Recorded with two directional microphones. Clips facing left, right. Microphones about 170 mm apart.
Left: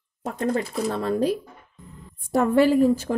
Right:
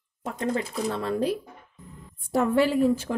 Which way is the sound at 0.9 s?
40° left (ahead or behind).